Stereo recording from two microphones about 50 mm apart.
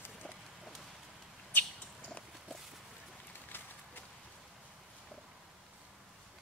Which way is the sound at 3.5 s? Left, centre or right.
Left.